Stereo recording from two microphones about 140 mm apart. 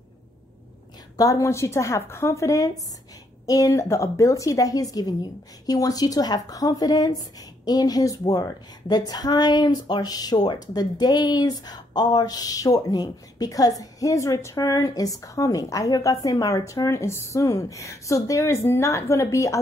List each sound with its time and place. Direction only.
1.1 s a woman's voice: 25° left (ahead or behind)